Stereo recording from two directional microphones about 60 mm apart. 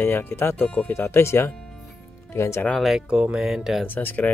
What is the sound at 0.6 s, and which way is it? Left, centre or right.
Speech, left.